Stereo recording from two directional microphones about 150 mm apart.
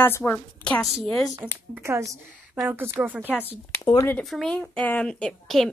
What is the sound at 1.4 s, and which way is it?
Speech, 15° right (ahead or behind).